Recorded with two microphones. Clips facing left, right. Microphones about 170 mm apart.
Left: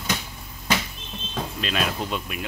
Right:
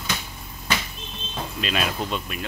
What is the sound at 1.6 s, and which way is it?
Speech, 5° right (ahead or behind).